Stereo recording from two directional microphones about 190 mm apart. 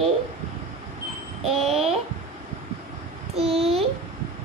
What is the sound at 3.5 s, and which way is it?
Speech, 30° right (ahead or behind).